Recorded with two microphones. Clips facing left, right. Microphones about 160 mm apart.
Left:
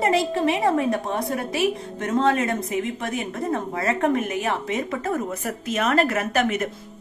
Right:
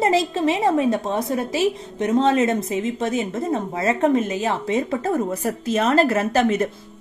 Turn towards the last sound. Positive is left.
turn(degrees=-30)  # may be behind; listen again after turning